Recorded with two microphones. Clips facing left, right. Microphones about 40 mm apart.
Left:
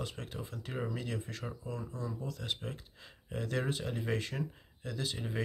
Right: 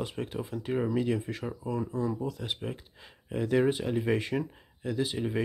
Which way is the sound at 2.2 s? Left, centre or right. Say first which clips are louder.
Right 5 dB; centre.